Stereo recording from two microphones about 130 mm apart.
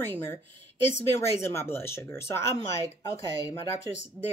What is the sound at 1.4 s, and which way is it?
Speech, 20° left (ahead or behind).